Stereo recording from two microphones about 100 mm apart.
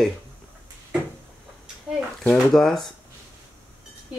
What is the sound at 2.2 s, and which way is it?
Speech, 5° left (ahead or behind).